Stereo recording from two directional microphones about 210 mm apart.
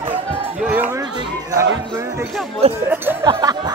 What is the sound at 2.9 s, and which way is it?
Music, 10° right (ahead or behind).